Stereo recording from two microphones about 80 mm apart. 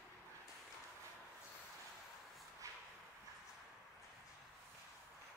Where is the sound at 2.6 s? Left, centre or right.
Right.